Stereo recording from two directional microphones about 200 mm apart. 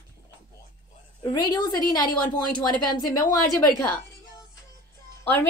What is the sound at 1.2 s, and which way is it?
Speech, 20° left (ahead or behind).